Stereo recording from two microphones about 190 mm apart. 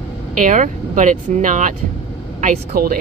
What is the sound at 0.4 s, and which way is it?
Speech, 40° right (ahead or behind).